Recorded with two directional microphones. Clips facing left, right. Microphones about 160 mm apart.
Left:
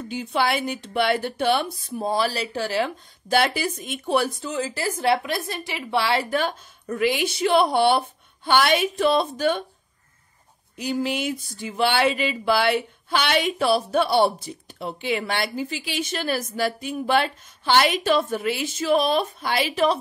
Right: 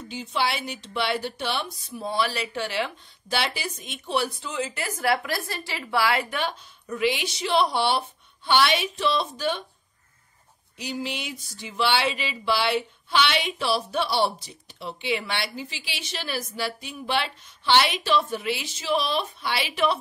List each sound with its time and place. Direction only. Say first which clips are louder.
0.1 s speech: left 4 dB; 50° left (ahead or behind); by 6.2 s 25° left (ahead or behind)
6.3 s speech: left 5 dB; 45° left (ahead or behind)
10.8 s speech: left 7 dB; 50° left (ahead or behind)